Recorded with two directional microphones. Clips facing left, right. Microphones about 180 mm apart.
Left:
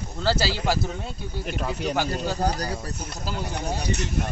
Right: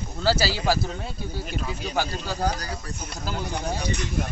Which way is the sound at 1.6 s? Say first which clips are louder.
Left 9 dB; 65° left (ahead or behind).